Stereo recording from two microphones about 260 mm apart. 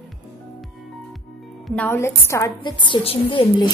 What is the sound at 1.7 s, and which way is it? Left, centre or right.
A woman's voice, centre.